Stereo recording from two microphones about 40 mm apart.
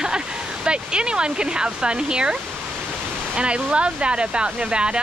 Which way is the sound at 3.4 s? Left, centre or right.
Right.